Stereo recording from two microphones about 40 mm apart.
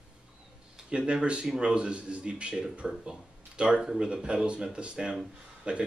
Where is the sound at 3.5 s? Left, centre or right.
Right.